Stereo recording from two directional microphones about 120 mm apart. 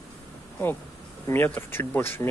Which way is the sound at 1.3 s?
15° left (ahead or behind).